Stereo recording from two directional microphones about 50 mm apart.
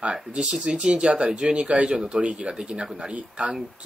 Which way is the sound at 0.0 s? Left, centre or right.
Centre.